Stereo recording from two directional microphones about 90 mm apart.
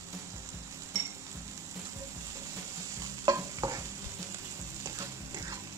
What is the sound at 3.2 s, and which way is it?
Stir, 40° right (ahead or behind).